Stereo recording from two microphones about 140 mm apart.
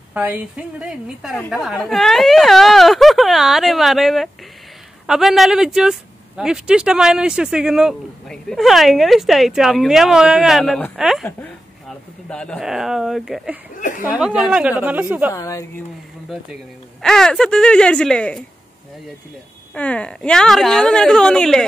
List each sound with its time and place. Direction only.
0.1 s speech: 10° right (ahead or behind)
12.3 s speech: 5° left (ahead or behind)
13.7 s chuckle: 65° left (ahead or behind)
14.0 s a woman's voice: 5° right (ahead or behind)
15.3 s speech: 25° left (ahead or behind)
17.0 s speech: 5° left (ahead or behind)
19.7 s speech: 10° left (ahead or behind)